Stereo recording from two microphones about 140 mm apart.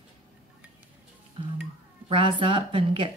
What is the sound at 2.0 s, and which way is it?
A woman's voice, 40° right (ahead or behind).